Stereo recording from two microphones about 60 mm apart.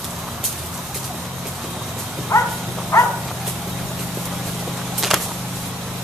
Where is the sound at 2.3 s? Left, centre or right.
Left.